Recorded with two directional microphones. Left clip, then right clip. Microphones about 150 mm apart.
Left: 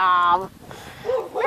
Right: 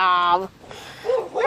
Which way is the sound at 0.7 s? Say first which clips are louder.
Right 2 dB; 5° right (ahead or behind).